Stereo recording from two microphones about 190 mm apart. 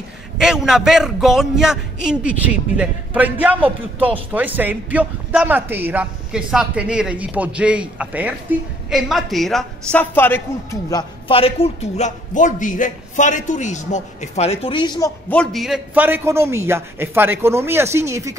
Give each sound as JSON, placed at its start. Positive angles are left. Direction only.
{"t": 0.4, "sound": "a man's voice", "side_deg": -5}
{"t": 15.3, "sound": "a man's voice", "side_deg": 5}